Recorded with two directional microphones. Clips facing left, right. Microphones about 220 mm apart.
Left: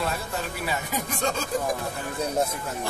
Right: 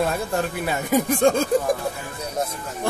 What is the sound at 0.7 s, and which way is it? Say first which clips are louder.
Speech: right 12 dB; 50° right (ahead or behind).